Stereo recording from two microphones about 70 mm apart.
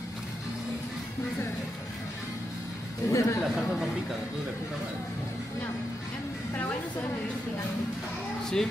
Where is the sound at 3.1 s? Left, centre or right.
Left.